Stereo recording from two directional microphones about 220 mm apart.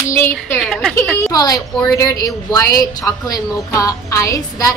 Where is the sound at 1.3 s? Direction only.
15° left (ahead or behind).